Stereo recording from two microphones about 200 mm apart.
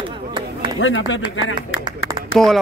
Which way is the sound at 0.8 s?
75° left (ahead or behind).